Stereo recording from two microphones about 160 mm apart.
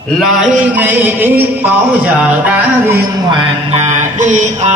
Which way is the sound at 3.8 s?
50° right (ahead or behind).